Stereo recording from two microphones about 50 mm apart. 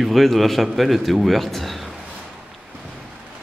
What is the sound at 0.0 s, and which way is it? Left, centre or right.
A man's voice, centre.